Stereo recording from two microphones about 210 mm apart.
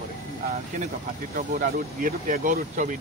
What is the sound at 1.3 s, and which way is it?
Speech, 40° right (ahead or behind).